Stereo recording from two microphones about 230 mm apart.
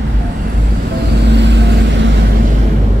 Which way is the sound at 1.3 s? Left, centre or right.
Right.